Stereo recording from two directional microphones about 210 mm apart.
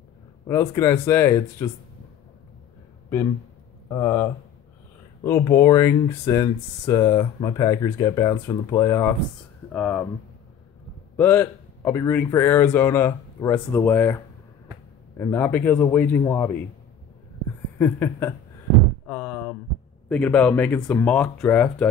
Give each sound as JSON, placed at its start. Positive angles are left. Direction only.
{"t": 0.5, "sound": "speech", "side_deg": 15}
{"t": 3.9, "sound": "speech", "side_deg": 10}
{"t": 11.1, "sound": "speech", "side_deg": 10}
{"t": 17.7, "sound": "a sound", "side_deg": 10}
{"t": 20.1, "sound": "speech", "side_deg": 5}